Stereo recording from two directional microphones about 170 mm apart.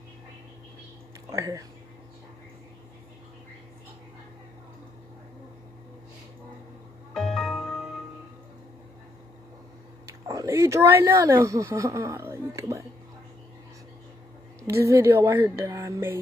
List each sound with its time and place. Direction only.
1.3 s speech: 20° right (ahead or behind)
7.2 s music: centre (ahead or behind)
10.2 s speech: 20° right (ahead or behind)
14.6 s speech: 15° right (ahead or behind)